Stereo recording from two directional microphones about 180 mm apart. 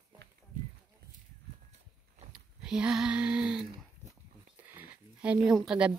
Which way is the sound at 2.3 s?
5° right (ahead or behind).